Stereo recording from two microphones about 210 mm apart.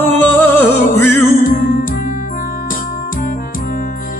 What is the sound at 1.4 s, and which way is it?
Music, 40° left (ahead or behind).